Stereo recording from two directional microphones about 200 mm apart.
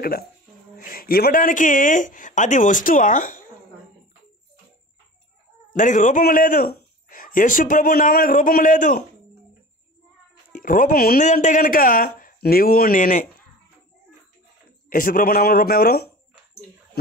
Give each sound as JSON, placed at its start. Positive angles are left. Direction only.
{"t": 0.7, "sound": "speech", "side_deg": 45}
{"t": 5.7, "sound": "a man's voice", "side_deg": 40}
{"t": 10.6, "sound": "a man's voice", "side_deg": 45}
{"t": 14.9, "sound": "a man's voice", "side_deg": 45}